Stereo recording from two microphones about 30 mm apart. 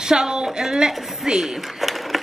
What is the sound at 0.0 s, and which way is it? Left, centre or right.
A woman's voice, centre.